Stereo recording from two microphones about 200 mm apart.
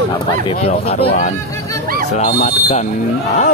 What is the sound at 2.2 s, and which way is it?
Speech, 35° left (ahead or behind).